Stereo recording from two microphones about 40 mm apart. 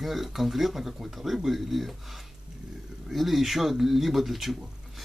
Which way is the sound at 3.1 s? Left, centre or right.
Centre.